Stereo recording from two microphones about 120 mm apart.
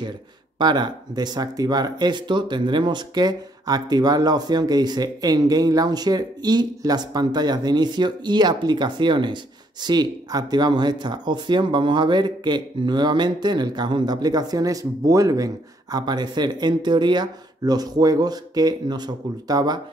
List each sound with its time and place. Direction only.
0.6 s speech: 35° right (ahead or behind)